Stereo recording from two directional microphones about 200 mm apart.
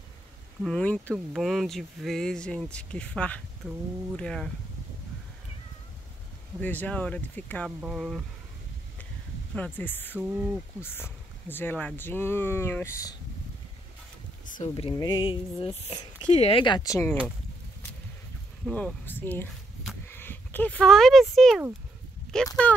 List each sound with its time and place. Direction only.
0.7 s speech: 5° left (ahead or behind)
6.6 s speech: 10° left (ahead or behind)
9.6 s speech: 10° left (ahead or behind)
10.3 s speech: 5° right (ahead or behind)
10.8 s speech: 10° left (ahead or behind)
14.6 s speech: 30° left (ahead or behind); by 17.2 s 15° left (ahead or behind)
18.7 s speech: 5° left (ahead or behind)